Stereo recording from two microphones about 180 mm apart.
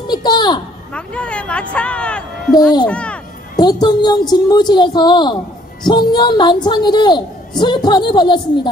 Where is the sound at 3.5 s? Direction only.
25° left (ahead or behind).